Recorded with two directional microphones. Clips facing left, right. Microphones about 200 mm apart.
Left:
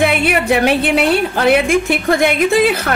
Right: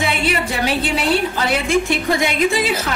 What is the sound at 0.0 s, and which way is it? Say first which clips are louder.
A woman's voice: left 5 dB; 60° left (ahead or behind).